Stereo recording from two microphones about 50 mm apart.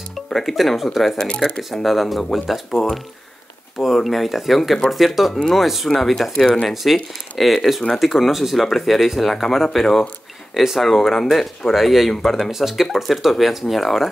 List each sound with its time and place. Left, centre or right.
0.3 s speech: centre
1.1 s speech: centre
1.6 s speech: centre
6.3 s speech: centre
6.7 s speech: centre
12.4 s speech: centre